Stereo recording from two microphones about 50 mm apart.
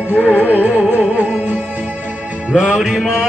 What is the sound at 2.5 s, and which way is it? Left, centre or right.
Music, centre.